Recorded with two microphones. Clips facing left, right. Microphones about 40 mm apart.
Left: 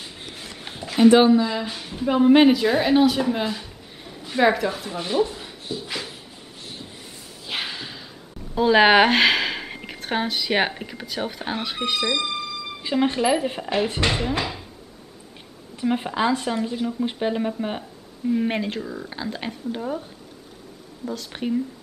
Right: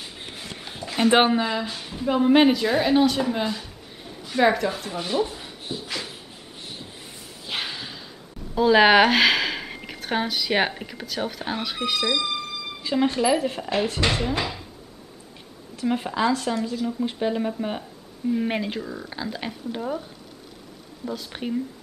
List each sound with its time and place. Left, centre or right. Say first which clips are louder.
0.8 s a sound: left 6 dB; centre
1.1 s speech: left 3 dB; right
1.7 s a woman's voice: left 1 dB; centre
5.9 s a sound: left 1 dB; centre
7.4 s a sound: left 1 dB; centre
8.5 s speech: even; centre
14.0 s a woman's voice: left 1 dB; centre
15.7 s a woman's voice: left 1 dB; centre
21.3 s a woman's voice: left 6 dB; centre